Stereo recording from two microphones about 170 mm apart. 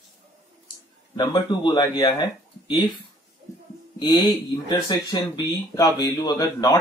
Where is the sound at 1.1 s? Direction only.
25° left (ahead or behind).